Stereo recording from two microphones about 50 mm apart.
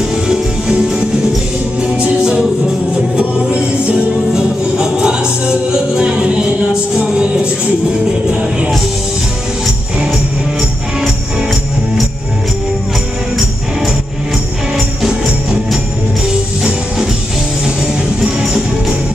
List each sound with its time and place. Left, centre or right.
1.8 s music: centre
4.3 s music: centre
8.3 s music: centre
15.0 s music: centre
18.2 s music: centre